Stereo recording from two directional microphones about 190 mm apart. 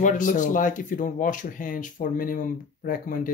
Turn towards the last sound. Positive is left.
turn(degrees=45)  # may be behind; listen again after turning